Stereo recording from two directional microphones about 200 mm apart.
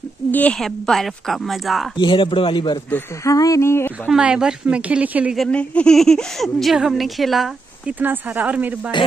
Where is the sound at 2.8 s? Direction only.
10° left (ahead or behind).